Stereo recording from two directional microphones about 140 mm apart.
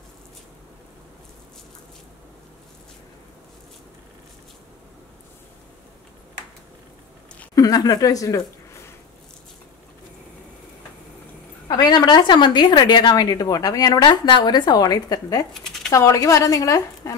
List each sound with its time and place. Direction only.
7.5 s speech: 25° left (ahead or behind)
11.6 s a woman's voice: 30° left (ahead or behind)
15.5 s a sound: 5° left (ahead or behind)
15.9 s speech: 20° left (ahead or behind)